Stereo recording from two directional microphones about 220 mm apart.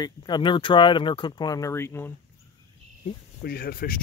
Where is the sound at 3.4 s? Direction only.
45° left (ahead or behind).